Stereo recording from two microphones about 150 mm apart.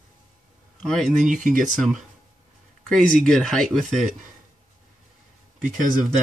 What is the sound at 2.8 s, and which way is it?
Speech, 5° left (ahead or behind).